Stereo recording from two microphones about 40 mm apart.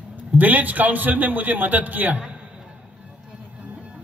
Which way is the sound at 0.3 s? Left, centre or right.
Right.